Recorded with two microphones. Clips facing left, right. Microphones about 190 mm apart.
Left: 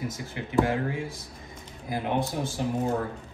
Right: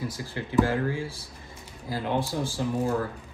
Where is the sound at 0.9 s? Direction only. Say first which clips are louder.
Even; 30° right (ahead or behind).